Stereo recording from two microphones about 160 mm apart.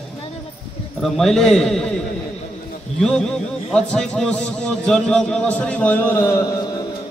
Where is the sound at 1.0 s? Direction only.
Centre (ahead or behind).